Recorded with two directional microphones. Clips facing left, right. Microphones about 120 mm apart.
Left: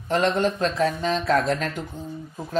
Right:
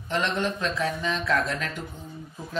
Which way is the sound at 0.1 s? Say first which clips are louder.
Left 5 dB; 40° left (ahead or behind).